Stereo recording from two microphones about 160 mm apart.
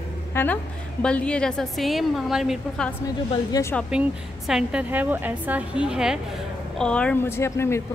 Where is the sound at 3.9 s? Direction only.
5° right (ahead or behind); by 7.8 s 15° left (ahead or behind).